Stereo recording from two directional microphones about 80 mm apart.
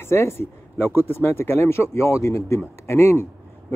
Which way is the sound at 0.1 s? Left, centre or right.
Left.